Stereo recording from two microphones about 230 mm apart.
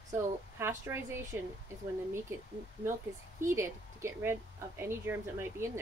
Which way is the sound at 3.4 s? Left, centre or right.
Centre.